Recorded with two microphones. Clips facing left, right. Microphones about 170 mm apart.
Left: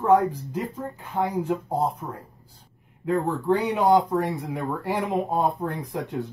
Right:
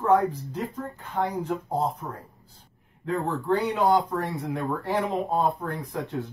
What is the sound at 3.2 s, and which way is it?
Speech, 15° left (ahead or behind).